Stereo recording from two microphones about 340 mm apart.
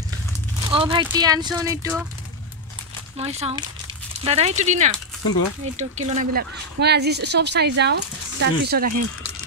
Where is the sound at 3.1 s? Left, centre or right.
Centre.